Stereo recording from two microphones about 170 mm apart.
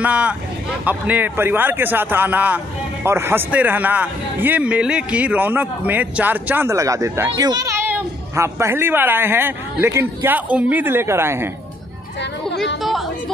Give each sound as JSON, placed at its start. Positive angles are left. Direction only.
{"t": 0.0, "sound": "speech", "side_deg": -10}
{"t": 12.2, "sound": "speech", "side_deg": 90}
{"t": 12.8, "sound": "a woman's voice", "side_deg": 0}